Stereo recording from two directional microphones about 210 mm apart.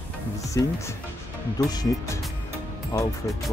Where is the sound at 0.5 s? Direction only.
15° left (ahead or behind).